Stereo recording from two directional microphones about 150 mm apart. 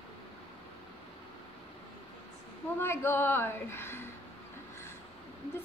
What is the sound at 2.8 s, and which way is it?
A woman's voice, 15° left (ahead or behind).